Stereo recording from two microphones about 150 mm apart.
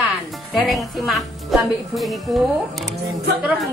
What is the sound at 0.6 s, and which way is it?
A woman's voice, centre (ahead or behind).